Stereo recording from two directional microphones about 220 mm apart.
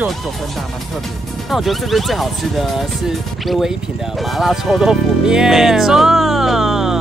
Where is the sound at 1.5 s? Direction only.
Centre (ahead or behind).